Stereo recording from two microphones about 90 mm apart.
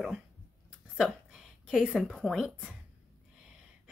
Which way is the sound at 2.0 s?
5° left (ahead or behind).